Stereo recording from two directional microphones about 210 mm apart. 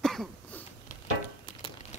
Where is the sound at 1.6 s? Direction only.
30° left (ahead or behind).